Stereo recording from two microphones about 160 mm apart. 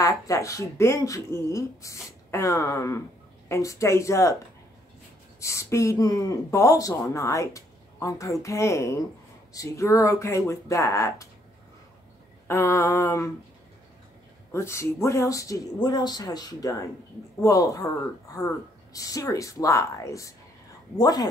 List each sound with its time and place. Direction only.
0.0 s speech: 20° left (ahead or behind)
5.4 s speech: 20° left (ahead or behind)
12.4 s a sound: 15° left (ahead or behind)
14.5 s speech: 15° left (ahead or behind)
18.9 s speech: 20° left (ahead or behind)